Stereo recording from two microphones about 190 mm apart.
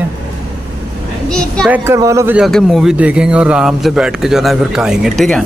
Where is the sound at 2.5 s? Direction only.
Centre (ahead or behind).